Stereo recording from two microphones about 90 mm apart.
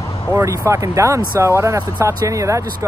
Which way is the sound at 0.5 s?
35° right (ahead or behind).